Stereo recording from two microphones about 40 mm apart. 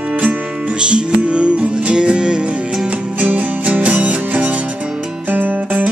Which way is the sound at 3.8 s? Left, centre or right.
Right.